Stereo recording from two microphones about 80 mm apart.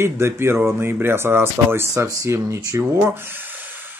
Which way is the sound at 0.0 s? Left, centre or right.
Right.